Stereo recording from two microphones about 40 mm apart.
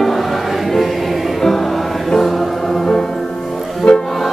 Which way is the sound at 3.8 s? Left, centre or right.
Left.